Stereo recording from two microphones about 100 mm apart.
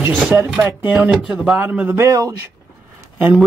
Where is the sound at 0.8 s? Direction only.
15° right (ahead or behind).